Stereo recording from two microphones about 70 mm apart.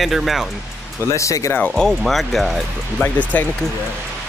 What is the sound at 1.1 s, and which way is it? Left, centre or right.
Speech, left.